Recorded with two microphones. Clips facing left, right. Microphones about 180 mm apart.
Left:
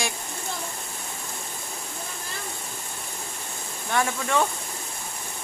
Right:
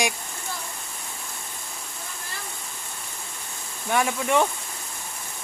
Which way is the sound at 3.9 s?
10° right (ahead or behind).